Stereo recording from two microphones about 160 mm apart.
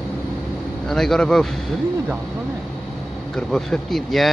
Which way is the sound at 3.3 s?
5° left (ahead or behind).